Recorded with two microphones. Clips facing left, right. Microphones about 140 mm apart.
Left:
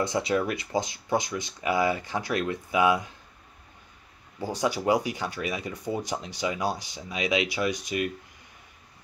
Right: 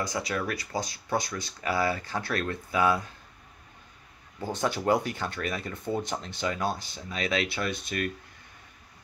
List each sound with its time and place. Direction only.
0.0 s speech: 25° left (ahead or behind)
4.4 s speech: 10° left (ahead or behind)